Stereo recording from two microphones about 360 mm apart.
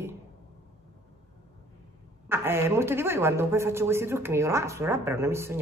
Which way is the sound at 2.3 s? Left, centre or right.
Centre.